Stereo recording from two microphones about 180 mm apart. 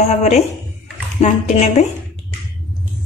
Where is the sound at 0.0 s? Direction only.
35° left (ahead or behind).